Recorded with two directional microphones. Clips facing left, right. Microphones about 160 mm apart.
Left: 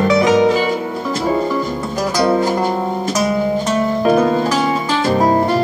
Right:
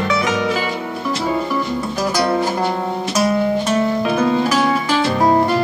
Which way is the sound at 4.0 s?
40° left (ahead or behind).